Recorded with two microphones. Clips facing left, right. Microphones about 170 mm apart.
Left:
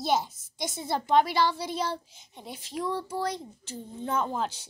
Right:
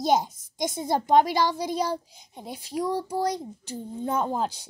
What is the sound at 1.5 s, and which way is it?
A child's voice, 15° right (ahead or behind).